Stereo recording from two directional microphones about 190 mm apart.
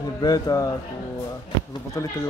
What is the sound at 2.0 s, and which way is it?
Speech, 15° left (ahead or behind).